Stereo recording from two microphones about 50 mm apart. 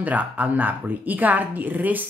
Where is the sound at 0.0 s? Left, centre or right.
Right.